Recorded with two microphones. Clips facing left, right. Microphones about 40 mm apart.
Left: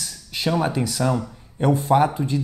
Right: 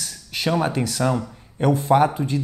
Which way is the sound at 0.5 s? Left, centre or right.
Centre.